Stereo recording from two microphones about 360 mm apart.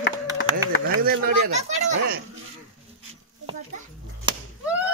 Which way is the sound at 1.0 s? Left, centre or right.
Right.